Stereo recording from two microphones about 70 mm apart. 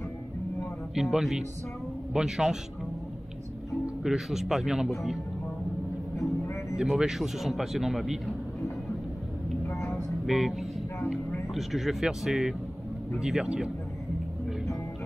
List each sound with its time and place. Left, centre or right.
0.9 s speech: centre
4.0 s speech: centre
6.1 s music: left
6.8 s speech: centre
9.8 s a sound: centre
11.5 s speech: centre